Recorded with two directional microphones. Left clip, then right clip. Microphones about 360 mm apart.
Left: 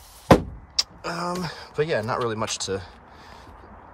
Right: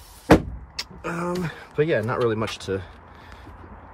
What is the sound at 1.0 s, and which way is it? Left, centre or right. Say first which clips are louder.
Speech: even; centre.